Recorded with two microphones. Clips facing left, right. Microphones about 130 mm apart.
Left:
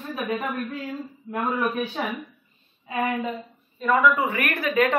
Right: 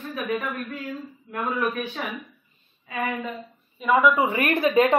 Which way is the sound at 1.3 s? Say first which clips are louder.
Left 1 dB; 25° left (ahead or behind).